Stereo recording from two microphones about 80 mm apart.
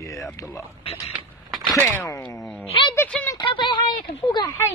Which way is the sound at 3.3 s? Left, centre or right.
Left.